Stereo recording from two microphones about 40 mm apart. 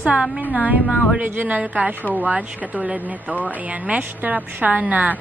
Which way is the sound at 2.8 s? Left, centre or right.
Right.